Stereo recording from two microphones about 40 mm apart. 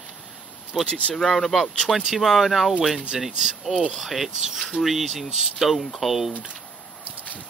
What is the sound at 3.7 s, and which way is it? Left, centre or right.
Speech, right.